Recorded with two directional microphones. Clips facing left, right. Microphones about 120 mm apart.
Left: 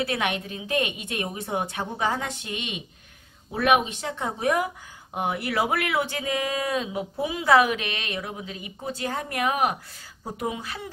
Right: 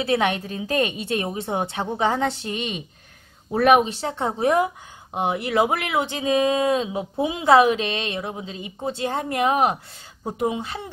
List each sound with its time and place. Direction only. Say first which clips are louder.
0.0 s a woman's voice: right 5 dB; 30° right (ahead or behind)